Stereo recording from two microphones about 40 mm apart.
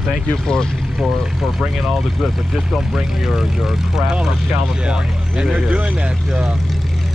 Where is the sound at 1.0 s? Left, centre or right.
Centre.